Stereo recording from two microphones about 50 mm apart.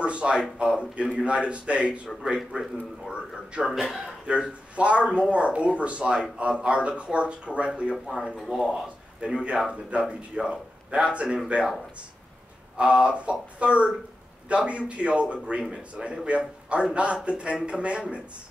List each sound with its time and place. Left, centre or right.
0.0 s a man's voice: right
3.6 s speech: centre
4.3 s a man's voice: right
7.9 s speech: centre
9.2 s a man's voice: right
12.7 s a man's voice: right